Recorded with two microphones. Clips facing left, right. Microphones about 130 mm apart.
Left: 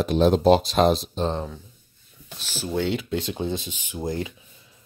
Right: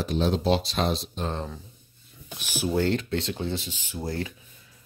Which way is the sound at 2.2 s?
15° right (ahead or behind).